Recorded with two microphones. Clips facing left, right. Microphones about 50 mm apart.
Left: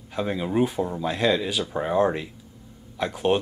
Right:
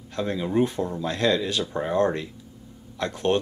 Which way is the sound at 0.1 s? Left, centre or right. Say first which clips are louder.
Even; centre.